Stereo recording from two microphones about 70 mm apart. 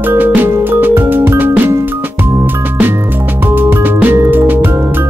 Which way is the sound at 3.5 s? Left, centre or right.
Right.